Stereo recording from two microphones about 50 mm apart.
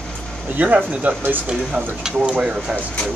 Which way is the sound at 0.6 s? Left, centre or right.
Right.